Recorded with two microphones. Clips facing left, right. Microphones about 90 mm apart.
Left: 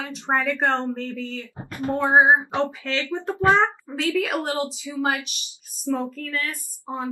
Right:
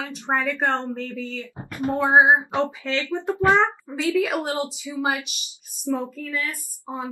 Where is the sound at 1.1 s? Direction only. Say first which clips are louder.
Even; 20° right (ahead or behind).